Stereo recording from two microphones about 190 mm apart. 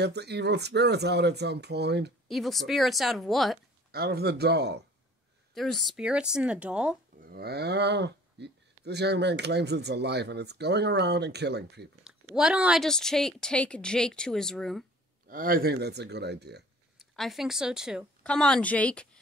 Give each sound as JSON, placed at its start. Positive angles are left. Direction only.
{"t": 0.0, "sound": "speech", "side_deg": -60}
{"t": 2.2, "sound": "a woman's voice", "side_deg": 0}
{"t": 3.9, "sound": "speech", "side_deg": -55}
{"t": 5.5, "sound": "a woman's voice", "side_deg": 0}
{"t": 7.2, "sound": "speech", "side_deg": -55}
{"t": 12.0, "sound": "a woman's voice", "side_deg": -5}
{"t": 15.2, "sound": "speech", "side_deg": -50}
{"t": 17.0, "sound": "a woman's voice", "side_deg": 0}